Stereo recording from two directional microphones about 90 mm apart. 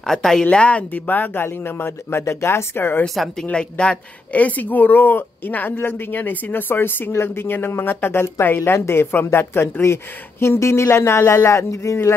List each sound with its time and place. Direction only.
0.0 s speech: 5° left (ahead or behind); by 3.1 s 25° left (ahead or behind)
3.4 s speech: 10° left (ahead or behind); by 12.2 s 30° left (ahead or behind)